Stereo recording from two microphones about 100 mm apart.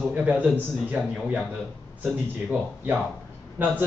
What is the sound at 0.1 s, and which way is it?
A man's voice, 15° right (ahead or behind).